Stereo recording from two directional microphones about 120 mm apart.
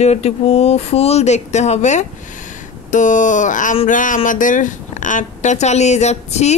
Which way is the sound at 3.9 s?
90° left.